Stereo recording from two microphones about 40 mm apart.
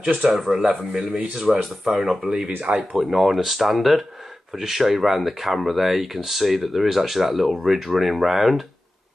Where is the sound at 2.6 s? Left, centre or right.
Right.